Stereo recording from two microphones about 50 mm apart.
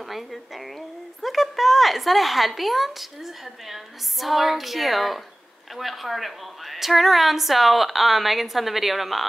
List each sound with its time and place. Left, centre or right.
0.0 s a woman's voice: centre